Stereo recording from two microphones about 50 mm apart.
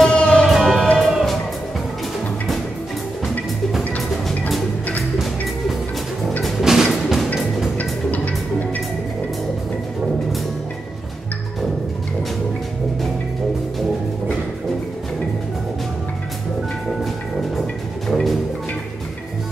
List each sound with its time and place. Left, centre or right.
0.0 s music: centre
0.5 s music: centre
6.6 s music: centre
7.7 s music: left
17.0 s music: centre